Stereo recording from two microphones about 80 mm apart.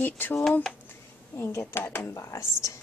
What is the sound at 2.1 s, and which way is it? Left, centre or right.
Speech, left.